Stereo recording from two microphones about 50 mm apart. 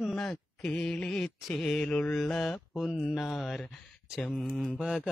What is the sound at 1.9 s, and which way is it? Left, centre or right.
Mantra, left.